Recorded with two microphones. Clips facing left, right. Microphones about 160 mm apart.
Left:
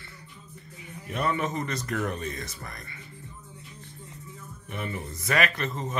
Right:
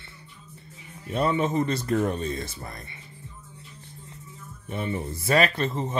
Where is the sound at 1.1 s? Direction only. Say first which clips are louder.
Right 4 dB; 30° right (ahead or behind).